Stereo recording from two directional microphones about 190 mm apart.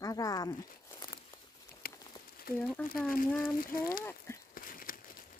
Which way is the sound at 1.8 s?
50° left (ahead or behind).